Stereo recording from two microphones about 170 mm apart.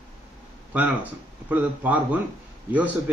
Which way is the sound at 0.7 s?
10° right (ahead or behind).